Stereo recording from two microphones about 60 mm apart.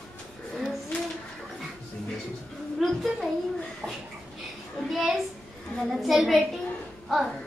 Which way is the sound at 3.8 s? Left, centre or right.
Centre.